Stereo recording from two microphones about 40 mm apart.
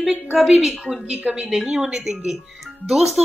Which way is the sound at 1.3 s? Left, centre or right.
Right.